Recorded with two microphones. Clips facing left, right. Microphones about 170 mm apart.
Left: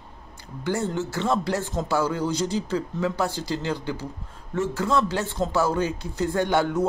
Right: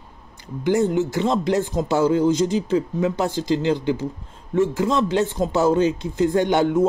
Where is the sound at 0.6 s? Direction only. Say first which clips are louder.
Right 7 dB; 15° right (ahead or behind).